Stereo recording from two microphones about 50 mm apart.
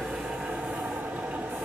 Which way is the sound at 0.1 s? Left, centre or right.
Centre.